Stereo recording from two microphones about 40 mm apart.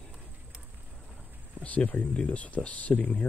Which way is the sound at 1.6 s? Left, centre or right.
Left.